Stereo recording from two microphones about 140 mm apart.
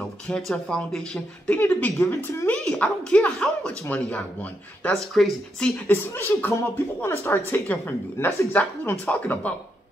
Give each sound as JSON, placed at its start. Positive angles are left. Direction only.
{"t": 0.5, "sound": "speech", "side_deg": 5}
{"t": 1.6, "sound": "speech", "side_deg": 15}
{"t": 5.9, "sound": "speech", "side_deg": 15}